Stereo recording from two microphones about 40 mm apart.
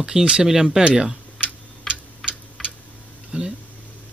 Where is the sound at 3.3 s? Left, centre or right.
Right.